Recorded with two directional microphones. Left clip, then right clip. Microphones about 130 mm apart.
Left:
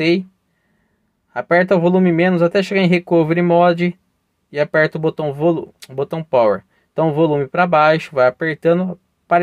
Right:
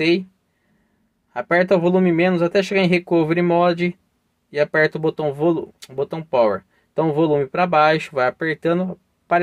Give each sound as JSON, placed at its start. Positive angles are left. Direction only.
{"t": 0.0, "sound": "speech", "side_deg": 30}
{"t": 1.3, "sound": "speech", "side_deg": 25}